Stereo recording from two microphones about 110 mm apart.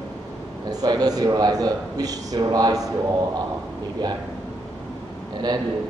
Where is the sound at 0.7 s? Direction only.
35° right (ahead or behind).